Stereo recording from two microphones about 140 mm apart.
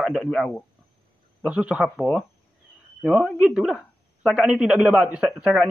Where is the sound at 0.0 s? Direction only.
Centre (ahead or behind).